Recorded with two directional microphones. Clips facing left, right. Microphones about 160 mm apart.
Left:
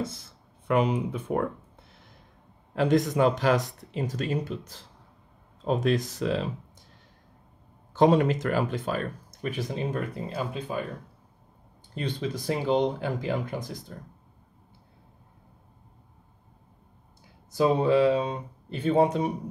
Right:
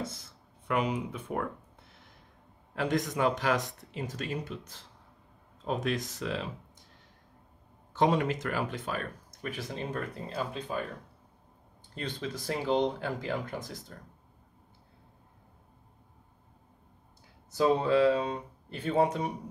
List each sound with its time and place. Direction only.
0.7 s speech: 30° left (ahead or behind)
2.7 s speech: 30° left (ahead or behind)
7.9 s speech: 35° left (ahead or behind)
9.6 s speech: 15° left (ahead or behind)
11.9 s speech: 15° left (ahead or behind)
17.5 s speech: 15° left (ahead or behind)